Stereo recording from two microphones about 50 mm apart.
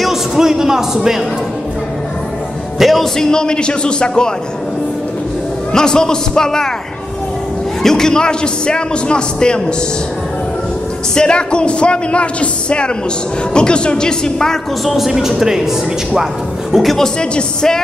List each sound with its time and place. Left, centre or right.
0.0 s speech: centre
2.8 s speech: centre
3.3 s a man's voice: centre
5.7 s a man's voice: centre
7.8 s a man's voice: centre
11.1 s a man's voice: centre
15.1 s speech: centre
16.7 s speech: centre
17.0 s a man's voice: centre